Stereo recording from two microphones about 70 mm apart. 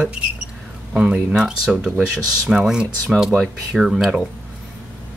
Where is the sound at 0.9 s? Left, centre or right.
Centre.